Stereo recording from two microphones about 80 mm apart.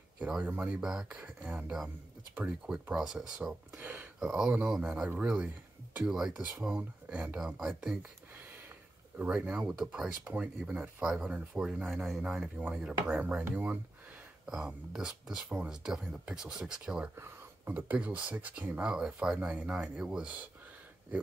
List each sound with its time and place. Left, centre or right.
0.6 s speech: centre
3.7 s speech: centre
4.2 s speech: centre
6.8 s speech: right
7.3 s speech: centre
9.2 s speech: centre
11.9 s speech: centre
12.2 s speech: centre
14.4 s speech: centre
17.1 s speech: right; by 20.3 s centre